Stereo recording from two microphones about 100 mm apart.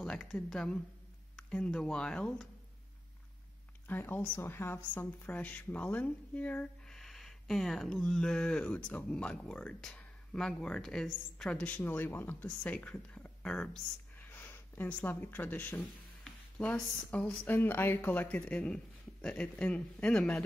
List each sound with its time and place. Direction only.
0.2 s speech: 5° left (ahead or behind)
3.8 s speech: 20° left (ahead or behind)
15.8 s music: 5° left (ahead or behind)
16.6 s speech: 15° left (ahead or behind)